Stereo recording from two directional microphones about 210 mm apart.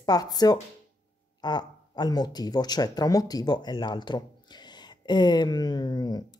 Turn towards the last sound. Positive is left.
turn(degrees=20)  # may be behind; listen again after turning